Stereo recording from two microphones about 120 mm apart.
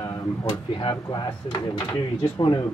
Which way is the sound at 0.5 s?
40° left (ahead or behind).